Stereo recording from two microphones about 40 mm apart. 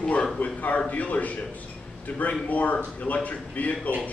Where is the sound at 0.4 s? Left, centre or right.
Left.